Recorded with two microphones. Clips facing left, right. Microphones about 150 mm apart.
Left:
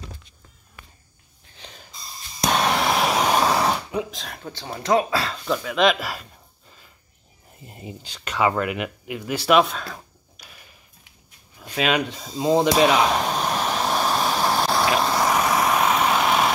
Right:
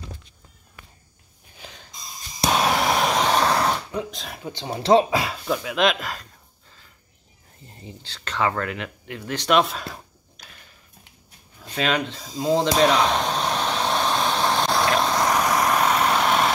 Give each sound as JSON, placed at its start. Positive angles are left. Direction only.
{"t": 1.6, "sound": "snort", "side_deg": -5}
{"t": 2.4, "sound": "a sound", "side_deg": -5}
{"t": 4.5, "sound": "speech", "side_deg": -20}
{"t": 5.2, "sound": "speech", "side_deg": -10}
{"t": 7.6, "sound": "speech", "side_deg": 10}
{"t": 11.7, "sound": "speech", "side_deg": 10}
{"t": 12.6, "sound": "vehicle", "side_deg": 5}